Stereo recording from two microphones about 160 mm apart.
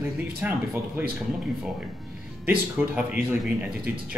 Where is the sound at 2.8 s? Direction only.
10° right (ahead or behind).